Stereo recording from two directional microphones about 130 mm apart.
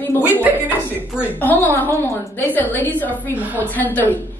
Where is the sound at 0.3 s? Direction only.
15° right (ahead or behind).